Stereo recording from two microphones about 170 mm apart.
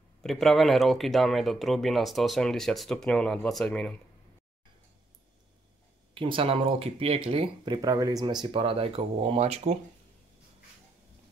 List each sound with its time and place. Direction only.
0.2 s speech: centre (ahead or behind)
6.1 s speech: 30° right (ahead or behind)